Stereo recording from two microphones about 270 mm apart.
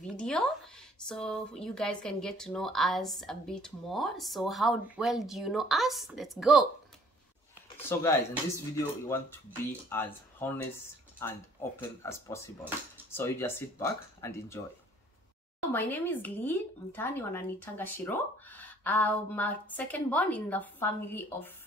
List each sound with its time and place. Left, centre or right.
0.2 s speech: centre
7.7 s speech: centre
15.7 s speech: centre